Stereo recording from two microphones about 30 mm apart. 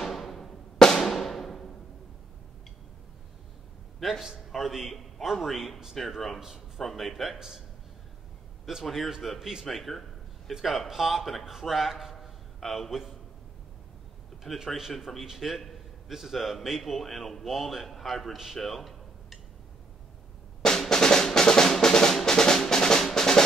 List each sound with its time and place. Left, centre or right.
0.0 s music: centre
1.0 s music: centre
4.0 s a man's voice: centre
7.3 s a man's voice: centre
8.8 s a man's voice: centre
9.7 s a sound: centre
10.6 s a man's voice: centre
12.5 s a man's voice: centre
14.5 s a man's voice: centre
20.9 s drum: left
21.8 s music: left
23.1 s drum: left